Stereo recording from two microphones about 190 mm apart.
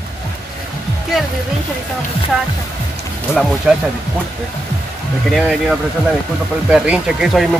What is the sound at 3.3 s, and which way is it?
Speech, 5° right (ahead or behind).